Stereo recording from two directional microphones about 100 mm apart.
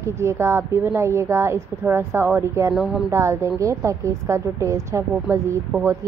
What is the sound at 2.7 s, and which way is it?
Speech, 5° right (ahead or behind).